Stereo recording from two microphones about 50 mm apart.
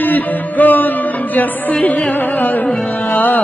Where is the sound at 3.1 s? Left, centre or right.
Left.